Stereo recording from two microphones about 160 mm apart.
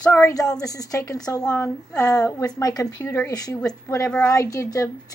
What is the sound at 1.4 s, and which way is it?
A woman's voice, 5° left (ahead or behind).